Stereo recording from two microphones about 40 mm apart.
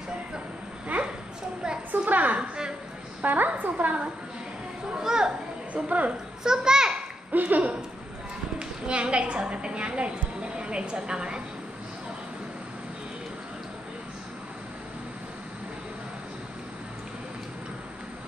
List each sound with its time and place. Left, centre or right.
0.9 s a sound: right
2.3 s a woman's voice: right
3.2 s a woman's voice: right
5.0 s a child's voice: centre
5.7 s speech: right
6.4 s a child's voice: centre
7.3 s a woman's voice: right
8.5 s a woman's voice: right